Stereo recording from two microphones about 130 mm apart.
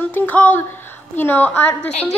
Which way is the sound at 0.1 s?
15° left (ahead or behind).